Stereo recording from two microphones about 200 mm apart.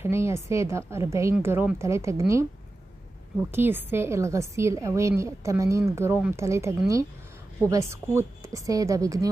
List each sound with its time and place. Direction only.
0.0 s a woman's voice: 15° right (ahead or behind)
3.5 s a woman's voice: 10° right (ahead or behind)